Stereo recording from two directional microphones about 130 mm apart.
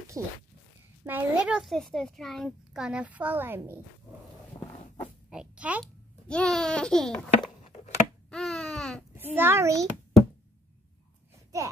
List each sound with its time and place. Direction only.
0.2 s a child's voice: 5° left (ahead or behind)
1.0 s a child's voice: 10° right (ahead or behind)
5.3 s a child's voice: 10° right (ahead or behind)
6.2 s a child's voice: 5° left (ahead or behind)
8.3 s babbling: 5° left (ahead or behind)
9.1 s a child's voice: 15° right (ahead or behind)